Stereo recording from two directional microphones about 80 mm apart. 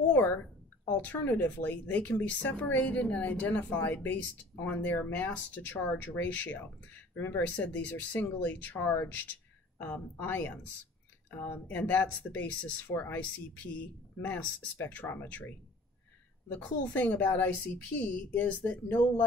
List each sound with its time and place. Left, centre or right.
0.8 s speech: left
7.5 s speech: centre